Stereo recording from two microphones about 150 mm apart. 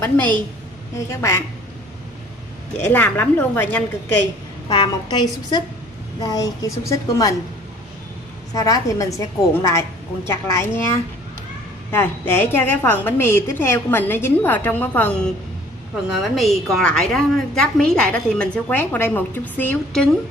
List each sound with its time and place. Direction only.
0.0 s a woman's voice: 10° left (ahead or behind)
2.9 s a woman's voice: 15° left (ahead or behind)
4.6 s a woman's voice: 35° left (ahead or behind)
8.5 s a woman's voice: 25° left (ahead or behind); by 20.1 s 5° left (ahead or behind)